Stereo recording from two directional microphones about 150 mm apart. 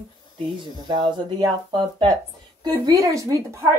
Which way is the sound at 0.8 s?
30° right (ahead or behind).